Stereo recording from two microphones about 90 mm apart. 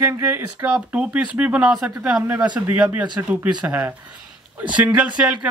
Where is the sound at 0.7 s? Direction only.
15° right (ahead or behind).